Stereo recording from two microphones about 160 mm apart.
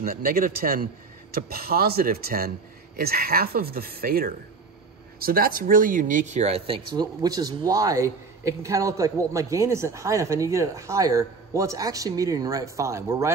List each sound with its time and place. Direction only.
0.0 s speech: 65° right (ahead or behind); by 6.8 s 40° right (ahead or behind)
7.0 s a man's voice: 25° right (ahead or behind)